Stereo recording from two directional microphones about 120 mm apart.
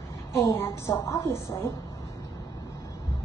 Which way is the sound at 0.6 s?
20° left (ahead or behind).